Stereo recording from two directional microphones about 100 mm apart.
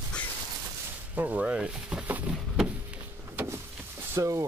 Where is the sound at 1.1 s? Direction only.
15° right (ahead or behind).